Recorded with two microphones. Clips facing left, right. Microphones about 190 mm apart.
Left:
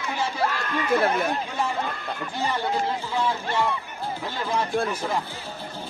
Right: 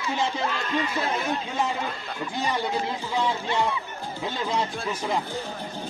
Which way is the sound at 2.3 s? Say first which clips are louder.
Even; 15° right (ahead or behind).